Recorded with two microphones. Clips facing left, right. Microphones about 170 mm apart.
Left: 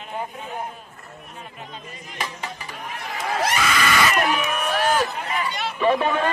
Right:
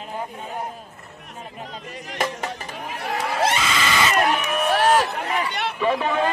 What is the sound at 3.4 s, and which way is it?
Crowd, 25° right (ahead or behind).